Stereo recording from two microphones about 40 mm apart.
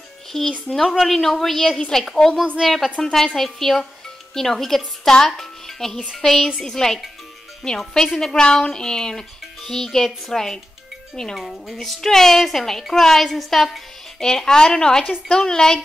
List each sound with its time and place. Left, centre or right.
0.5 s speech: centre
0.8 s a woman's voice: centre
2.6 s a woman's voice: centre
3.0 s a woman's voice: centre
11.3 s a woman's voice: centre
14.2 s speech: centre